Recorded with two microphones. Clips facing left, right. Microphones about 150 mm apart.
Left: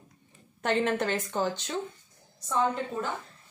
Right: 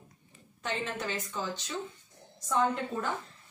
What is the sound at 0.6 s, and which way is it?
Speech, 60° left (ahead or behind).